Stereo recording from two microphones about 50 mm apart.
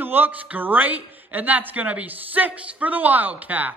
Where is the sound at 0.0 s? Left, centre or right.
Right.